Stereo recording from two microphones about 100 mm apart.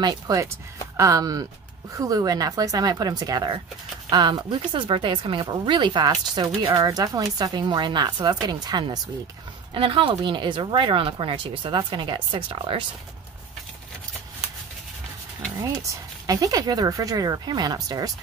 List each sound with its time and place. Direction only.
0.0 s speech: 45° right (ahead or behind)
0.9 s speech: 35° right (ahead or behind); by 4.8 s 50° right (ahead or behind)
4.8 s speech: 65° right (ahead or behind); by 8.8 s 40° right (ahead or behind)
9.8 s speech: 60° right (ahead or behind)
15.6 s speech: 35° right (ahead or behind)